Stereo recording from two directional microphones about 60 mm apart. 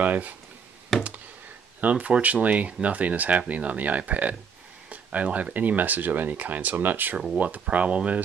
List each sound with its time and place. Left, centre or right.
0.0 s speech: right
0.9 s a sound: centre
1.8 s speech: right